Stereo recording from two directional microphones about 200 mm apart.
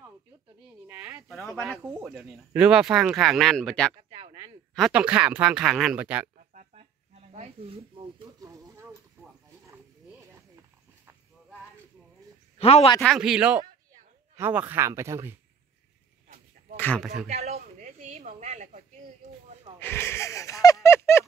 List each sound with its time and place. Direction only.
0.8 s a sound: 10° right (ahead or behind)
1.3 s speech: centre (ahead or behind)
1.8 s speech: 15° right (ahead or behind)
2.0 s speech: centre (ahead or behind)
4.1 s a sound: 25° right (ahead or behind)
4.7 s speech: centre (ahead or behind)
6.5 s snake: 40° right (ahead or behind)
8.2 s a sound: 20° right (ahead or behind)
12.5 s speech: 30° left (ahead or behind)
13.0 s speech: centre (ahead or behind)
16.7 s speech: 5° left (ahead or behind)
17.3 s speech: 30° right (ahead or behind)
19.8 s a sound: 10° left (ahead or behind)